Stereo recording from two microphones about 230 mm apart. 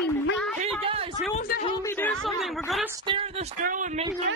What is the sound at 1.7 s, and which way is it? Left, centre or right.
Speech, centre.